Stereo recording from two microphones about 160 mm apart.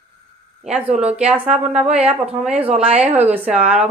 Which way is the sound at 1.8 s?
5° right (ahead or behind).